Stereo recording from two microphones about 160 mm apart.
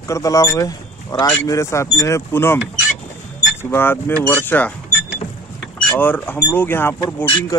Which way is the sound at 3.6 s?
15° left (ahead or behind).